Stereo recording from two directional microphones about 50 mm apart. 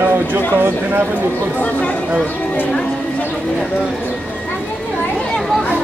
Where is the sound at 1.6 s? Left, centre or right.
Left.